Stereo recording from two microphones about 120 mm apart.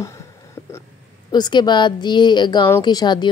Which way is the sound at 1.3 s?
35° left (ahead or behind).